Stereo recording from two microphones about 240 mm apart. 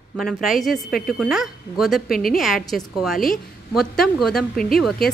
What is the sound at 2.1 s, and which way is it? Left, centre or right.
Speech, left.